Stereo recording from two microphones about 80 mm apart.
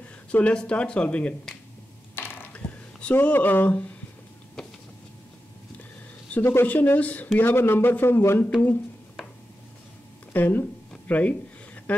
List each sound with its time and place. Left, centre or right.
0.0 s speech: centre
2.1 s a sound: left
4.6 s vehicle: centre
6.4 s speech: left
6.7 s a man's voice: left
10.3 s a man's voice: left
11.1 s a sound: centre